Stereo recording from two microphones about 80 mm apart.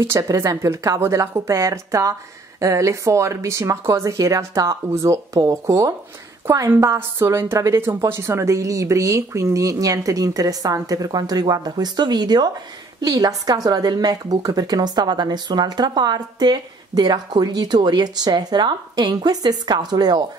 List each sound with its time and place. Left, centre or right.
0.0 s speech: right
7.0 s a woman's voice: right